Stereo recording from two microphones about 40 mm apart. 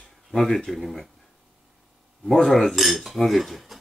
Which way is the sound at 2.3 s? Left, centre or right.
Centre.